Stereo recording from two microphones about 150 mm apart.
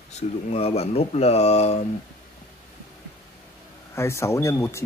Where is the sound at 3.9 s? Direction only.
20° left (ahead or behind).